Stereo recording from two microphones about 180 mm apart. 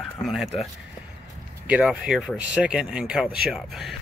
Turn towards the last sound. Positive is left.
turn(degrees=0)  # may be behind; listen again after turning